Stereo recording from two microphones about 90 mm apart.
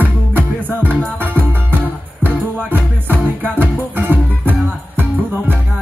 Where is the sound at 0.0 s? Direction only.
20° right (ahead or behind).